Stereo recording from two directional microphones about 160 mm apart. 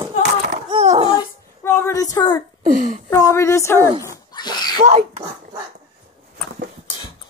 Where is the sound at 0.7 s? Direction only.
30° right (ahead or behind).